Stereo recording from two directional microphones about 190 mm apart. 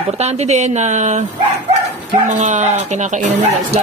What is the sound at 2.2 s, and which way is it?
Speech, 40° right (ahead or behind).